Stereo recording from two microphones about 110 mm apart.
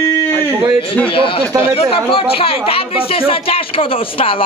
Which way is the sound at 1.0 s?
55° left (ahead or behind).